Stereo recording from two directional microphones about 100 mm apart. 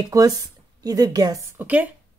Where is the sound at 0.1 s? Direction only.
35° right (ahead or behind).